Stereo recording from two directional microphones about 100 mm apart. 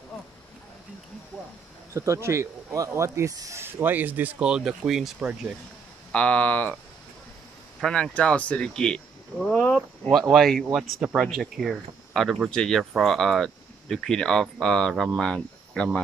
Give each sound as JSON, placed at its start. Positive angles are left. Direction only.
{"t": 2.0, "sound": "speech", "side_deg": -30}
{"t": 6.1, "sound": "speech", "side_deg": 10}
{"t": 7.8, "sound": "speech", "side_deg": 10}
{"t": 10.0, "sound": "speech", "side_deg": 0}